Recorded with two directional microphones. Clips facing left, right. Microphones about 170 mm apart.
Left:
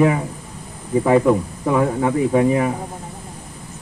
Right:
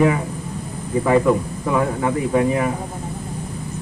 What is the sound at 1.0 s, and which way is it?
Speech, 20° left (ahead or behind).